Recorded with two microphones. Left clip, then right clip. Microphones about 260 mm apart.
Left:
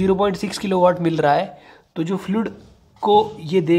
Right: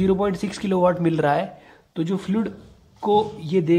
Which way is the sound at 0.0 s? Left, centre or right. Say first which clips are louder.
Left 3 dB; left.